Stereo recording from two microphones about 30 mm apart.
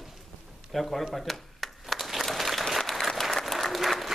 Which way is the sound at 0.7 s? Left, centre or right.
Centre.